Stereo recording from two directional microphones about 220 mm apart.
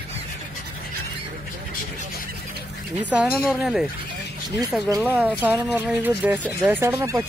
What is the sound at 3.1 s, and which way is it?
Speech, 5° right (ahead or behind).